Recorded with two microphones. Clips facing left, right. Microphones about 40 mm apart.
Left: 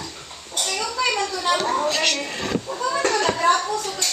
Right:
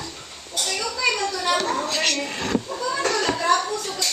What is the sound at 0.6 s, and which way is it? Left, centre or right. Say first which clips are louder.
Speech: left 1 dB; left.